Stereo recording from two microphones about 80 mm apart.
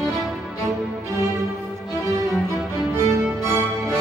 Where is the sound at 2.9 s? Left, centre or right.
Right.